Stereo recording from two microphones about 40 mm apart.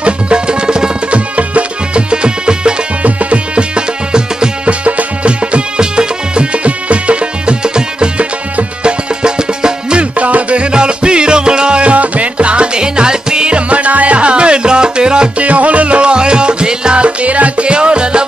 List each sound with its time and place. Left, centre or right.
0.0 s music: right
1.1 s music: right
3.0 s music: right
10.1 s music: right
15.4 s music: right